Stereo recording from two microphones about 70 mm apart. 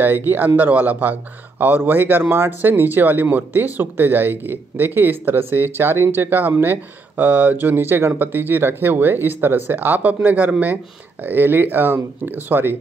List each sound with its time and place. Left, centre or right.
0.0 s speech: right